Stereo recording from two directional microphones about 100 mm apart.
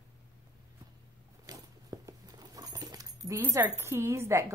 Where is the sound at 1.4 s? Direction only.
35° right (ahead or behind).